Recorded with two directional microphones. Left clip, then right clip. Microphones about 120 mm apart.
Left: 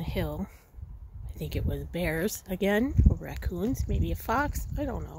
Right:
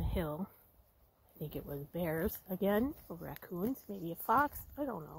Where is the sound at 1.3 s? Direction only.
20° left (ahead or behind).